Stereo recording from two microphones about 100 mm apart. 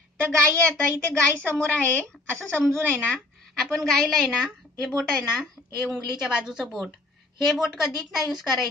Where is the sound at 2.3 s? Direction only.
25° right (ahead or behind).